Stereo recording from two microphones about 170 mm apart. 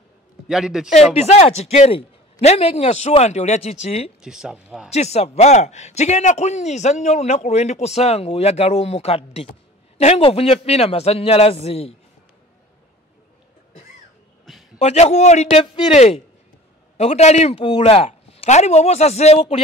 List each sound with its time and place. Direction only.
0.5 s speech: 5° right (ahead or behind)
1.1 s speech: 40° left (ahead or behind)
4.2 s speech: 5° right (ahead or behind)
4.9 s speech: 40° left (ahead or behind)
14.4 s a sound: centre (ahead or behind)
14.8 s speech: 40° left (ahead or behind)